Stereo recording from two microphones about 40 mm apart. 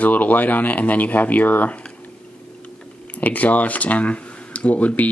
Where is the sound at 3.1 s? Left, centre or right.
Left.